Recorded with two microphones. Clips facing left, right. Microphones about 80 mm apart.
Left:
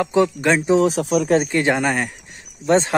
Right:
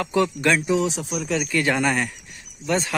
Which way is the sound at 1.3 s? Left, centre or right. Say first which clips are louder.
Left 5 dB; left.